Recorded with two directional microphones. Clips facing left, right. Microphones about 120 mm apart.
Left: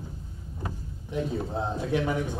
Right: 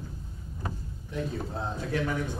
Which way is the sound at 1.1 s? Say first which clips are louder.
Left 4 dB; 20° left (ahead or behind).